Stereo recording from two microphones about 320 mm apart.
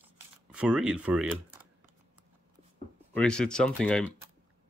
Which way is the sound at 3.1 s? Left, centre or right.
Centre.